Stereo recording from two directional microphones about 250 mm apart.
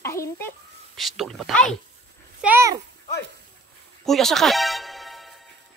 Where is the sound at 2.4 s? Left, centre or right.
Centre.